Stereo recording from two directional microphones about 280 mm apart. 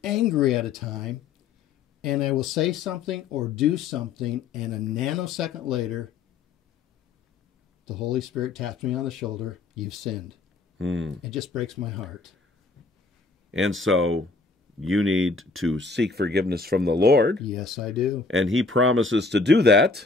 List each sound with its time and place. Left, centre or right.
0.0 s speech: centre
7.8 s speech: centre
10.8 s speech: right
11.2 s speech: centre
13.5 s speech: right
17.4 s speech: centre
18.2 s speech: right